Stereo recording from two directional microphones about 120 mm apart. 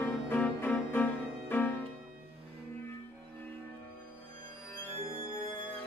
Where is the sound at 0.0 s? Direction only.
15° left (ahead or behind).